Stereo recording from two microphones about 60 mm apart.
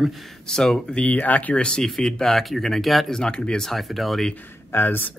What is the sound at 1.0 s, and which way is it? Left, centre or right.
Speech, left.